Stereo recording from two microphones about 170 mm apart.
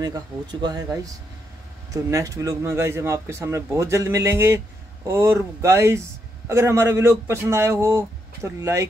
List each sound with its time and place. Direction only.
0.0 s speech: 25° right (ahead or behind)